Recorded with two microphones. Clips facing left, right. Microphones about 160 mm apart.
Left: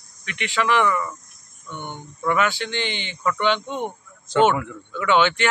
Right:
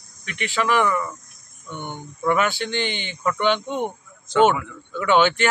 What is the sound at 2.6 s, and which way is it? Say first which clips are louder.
Speech: right 2 dB; 50° right (ahead or behind).